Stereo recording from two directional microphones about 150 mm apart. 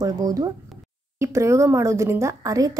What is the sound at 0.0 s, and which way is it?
Speech, 25° right (ahead or behind).